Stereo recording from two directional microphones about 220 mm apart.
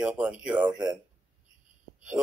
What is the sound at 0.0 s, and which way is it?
Speech, 5° right (ahead or behind).